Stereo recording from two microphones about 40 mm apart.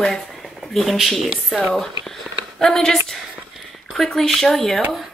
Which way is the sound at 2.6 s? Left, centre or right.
Centre.